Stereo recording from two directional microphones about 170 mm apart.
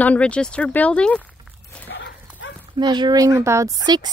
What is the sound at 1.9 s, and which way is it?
Dog, 90° left.